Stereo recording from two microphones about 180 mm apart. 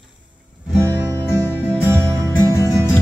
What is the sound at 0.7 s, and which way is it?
Music, 15° right (ahead or behind).